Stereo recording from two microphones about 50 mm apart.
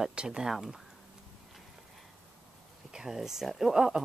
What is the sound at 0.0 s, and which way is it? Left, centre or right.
Speech, centre.